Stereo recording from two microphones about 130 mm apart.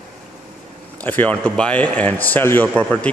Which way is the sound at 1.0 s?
15° left (ahead or behind).